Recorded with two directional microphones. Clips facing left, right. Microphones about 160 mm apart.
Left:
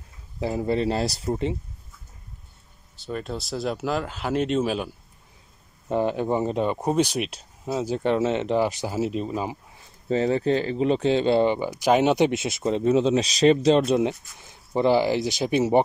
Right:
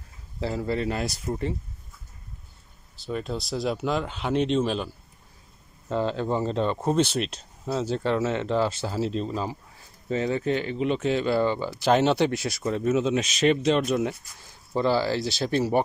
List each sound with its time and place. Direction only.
0.4 s speech: 20° left (ahead or behind)
3.0 s speech: centre (ahead or behind)
10.0 s speech: 35° left (ahead or behind); by 15.8 s 20° left (ahead or behind)